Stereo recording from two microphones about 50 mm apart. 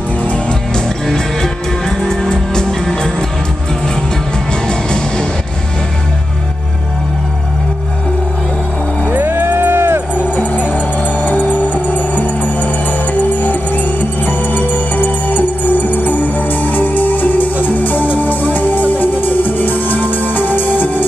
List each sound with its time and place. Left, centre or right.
0.2 s music: left
0.7 s music: centre
4.5 s music: centre
9.2 s music: right
11.2 s music: left